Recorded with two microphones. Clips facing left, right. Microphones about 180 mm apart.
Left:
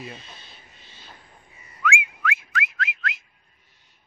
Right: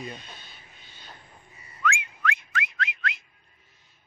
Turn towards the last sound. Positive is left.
turn(degrees=0)  # may be behind; listen again after turning